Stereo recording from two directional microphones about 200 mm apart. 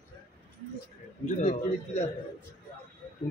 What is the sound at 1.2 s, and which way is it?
Speech, 35° left (ahead or behind).